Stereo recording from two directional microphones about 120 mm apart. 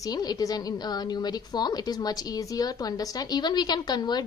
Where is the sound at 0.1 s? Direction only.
35° left (ahead or behind).